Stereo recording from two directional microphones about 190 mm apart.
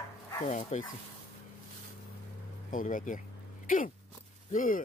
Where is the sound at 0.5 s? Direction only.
40° left (ahead or behind).